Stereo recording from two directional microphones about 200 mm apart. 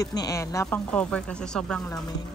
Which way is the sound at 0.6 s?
5° left (ahead or behind).